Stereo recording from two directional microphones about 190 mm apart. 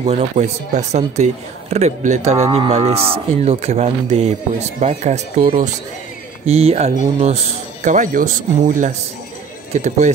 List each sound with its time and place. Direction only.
0.0 s speech: 35° right (ahead or behind)